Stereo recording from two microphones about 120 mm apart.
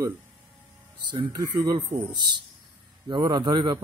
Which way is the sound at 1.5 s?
40° right (ahead or behind).